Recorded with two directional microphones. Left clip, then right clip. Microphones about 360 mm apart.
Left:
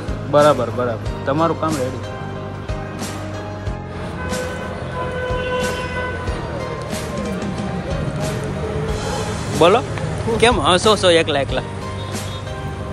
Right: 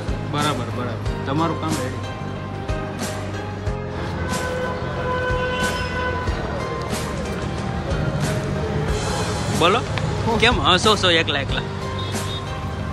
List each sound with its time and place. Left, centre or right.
0.3 s speech: centre
7.9 s music: centre
10.4 s speech: centre